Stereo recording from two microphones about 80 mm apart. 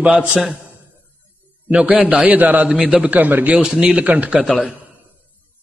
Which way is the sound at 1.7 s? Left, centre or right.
Centre.